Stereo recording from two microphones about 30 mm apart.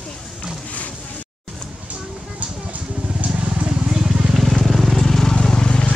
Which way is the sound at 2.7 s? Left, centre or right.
Right.